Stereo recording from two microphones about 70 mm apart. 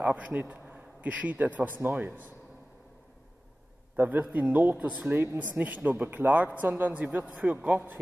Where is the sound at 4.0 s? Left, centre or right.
Right.